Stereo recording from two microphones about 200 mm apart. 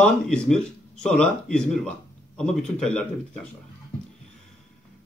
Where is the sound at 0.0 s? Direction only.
5° left (ahead or behind).